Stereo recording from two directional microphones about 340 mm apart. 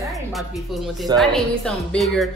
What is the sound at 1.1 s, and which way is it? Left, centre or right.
A woman's voice, centre.